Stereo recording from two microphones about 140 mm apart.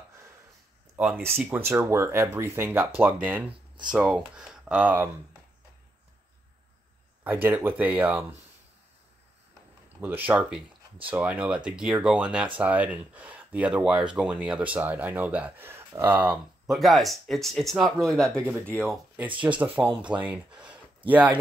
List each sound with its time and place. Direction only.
0.9 s speech: 10° right (ahead or behind)
7.2 s speech: 15° right (ahead or behind)
9.9 s speech: 10° right (ahead or behind); by 18.9 s 5° left (ahead or behind)
19.6 s speech: 10° right (ahead or behind)